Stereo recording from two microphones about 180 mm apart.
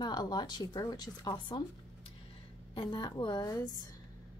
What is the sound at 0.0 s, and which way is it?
Speech, 20° left (ahead or behind).